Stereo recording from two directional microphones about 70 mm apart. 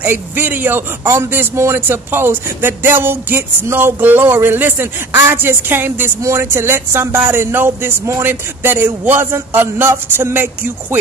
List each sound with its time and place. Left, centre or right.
0.0 s a man's voice: right
1.0 s speech: right